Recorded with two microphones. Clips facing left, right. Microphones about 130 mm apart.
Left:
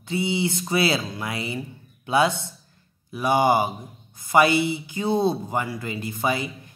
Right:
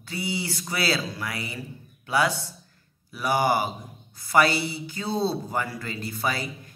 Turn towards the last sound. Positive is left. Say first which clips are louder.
# left 4 dB
turn(degrees=20)  # may be behind; listen again after turning